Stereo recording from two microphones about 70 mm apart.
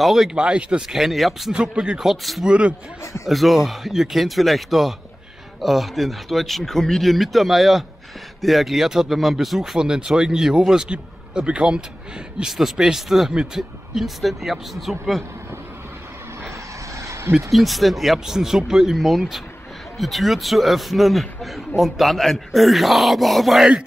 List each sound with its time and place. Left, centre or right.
0.0 s a man's voice: centre
0.4 s a man's voice: centre
2.4 s speech: centre
3.3 s a man's voice: centre
16.9 s a sound: right
17.5 s a man's voice: centre